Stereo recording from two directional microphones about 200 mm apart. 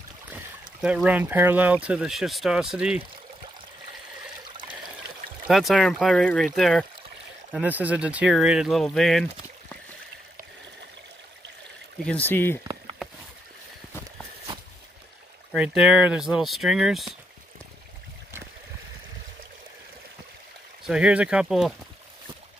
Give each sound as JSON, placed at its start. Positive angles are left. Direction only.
{"t": 0.3, "sound": "speech", "side_deg": -5}
{"t": 4.5, "sound": "trickle", "side_deg": -25}
{"t": 5.5, "sound": "speech", "side_deg": 0}
{"t": 12.0, "sound": "speech", "side_deg": 5}
{"t": 15.5, "sound": "speech", "side_deg": -5}
{"t": 20.8, "sound": "speech", "side_deg": -5}